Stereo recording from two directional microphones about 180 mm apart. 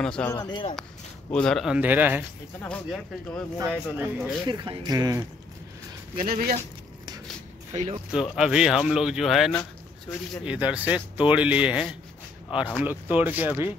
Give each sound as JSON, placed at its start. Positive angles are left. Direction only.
{"t": 0.0, "sound": "speech", "side_deg": 5}
{"t": 0.3, "sound": "speech", "side_deg": 25}
{"t": 1.3, "sound": "speech", "side_deg": 5}
{"t": 2.6, "sound": "speech", "side_deg": 5}
{"t": 3.5, "sound": "speech", "side_deg": -10}
{"t": 4.5, "sound": "speech", "side_deg": -25}
{"t": 6.1, "sound": "speech", "side_deg": -55}
{"t": 8.1, "sound": "speech", "side_deg": -5}